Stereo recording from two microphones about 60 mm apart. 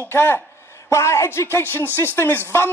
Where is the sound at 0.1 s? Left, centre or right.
Left.